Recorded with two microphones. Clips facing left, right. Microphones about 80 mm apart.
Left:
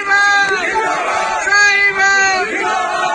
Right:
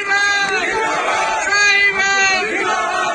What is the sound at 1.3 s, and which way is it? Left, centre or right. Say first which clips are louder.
Battle cry: left 3 dB; left.